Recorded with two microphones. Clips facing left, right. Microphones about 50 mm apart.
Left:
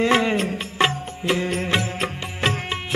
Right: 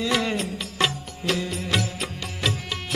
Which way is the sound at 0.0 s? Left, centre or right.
Left.